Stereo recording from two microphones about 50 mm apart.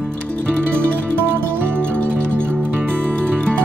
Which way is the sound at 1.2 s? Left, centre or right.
Right.